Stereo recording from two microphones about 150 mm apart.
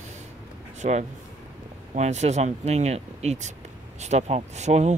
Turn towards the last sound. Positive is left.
turn(degrees=-50)  # may be behind; listen again after turning